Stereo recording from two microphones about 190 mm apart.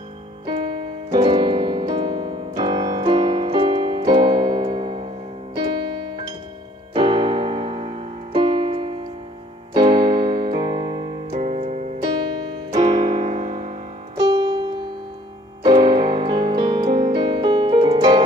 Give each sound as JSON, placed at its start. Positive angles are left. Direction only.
{"t": 0.5, "sound": "piano", "side_deg": -25}
{"t": 6.9, "sound": "music", "side_deg": -25}
{"t": 9.8, "sound": "keyboard", "side_deg": -25}
{"t": 11.2, "sound": "music", "side_deg": -35}
{"t": 12.1, "sound": "piano", "side_deg": -25}
{"t": 15.6, "sound": "music", "side_deg": -25}